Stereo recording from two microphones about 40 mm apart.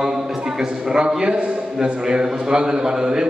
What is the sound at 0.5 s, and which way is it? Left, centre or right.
A man's voice, centre.